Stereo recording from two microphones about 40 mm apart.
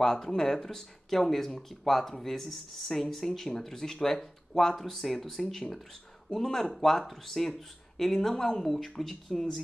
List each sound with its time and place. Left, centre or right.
0.0 s speech: centre